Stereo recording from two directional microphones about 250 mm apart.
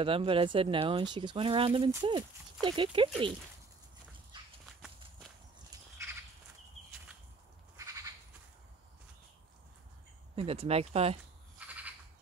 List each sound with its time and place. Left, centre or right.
0.0 s speech: right
7.7 s goat: centre
10.3 s speech: right
11.5 s a sound: centre